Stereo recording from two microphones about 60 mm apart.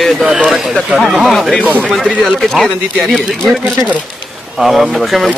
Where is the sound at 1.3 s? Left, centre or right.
Centre.